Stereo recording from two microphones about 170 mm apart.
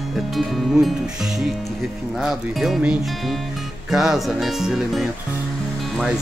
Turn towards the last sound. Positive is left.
turn(degrees=0)  # may be behind; listen again after turning